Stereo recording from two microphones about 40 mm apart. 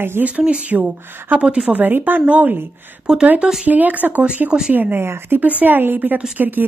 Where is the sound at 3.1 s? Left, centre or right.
Centre.